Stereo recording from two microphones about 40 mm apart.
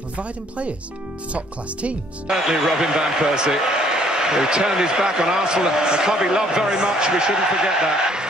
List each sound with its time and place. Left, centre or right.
0.2 s speech: right
2.3 s speech: centre